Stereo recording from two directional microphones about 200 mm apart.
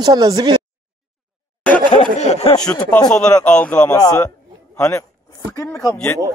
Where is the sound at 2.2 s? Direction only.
35° left (ahead or behind).